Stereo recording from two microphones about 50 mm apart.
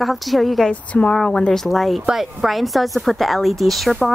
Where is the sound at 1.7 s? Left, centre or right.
Centre.